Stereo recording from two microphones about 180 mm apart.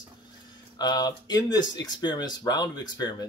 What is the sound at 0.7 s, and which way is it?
Speech, 20° left (ahead or behind).